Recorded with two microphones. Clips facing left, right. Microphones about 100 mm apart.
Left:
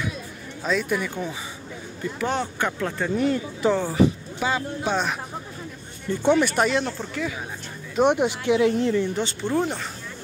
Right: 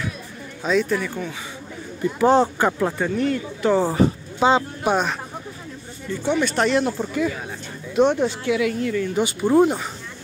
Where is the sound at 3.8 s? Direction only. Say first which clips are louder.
Right 1 dB; 45° right (ahead or behind).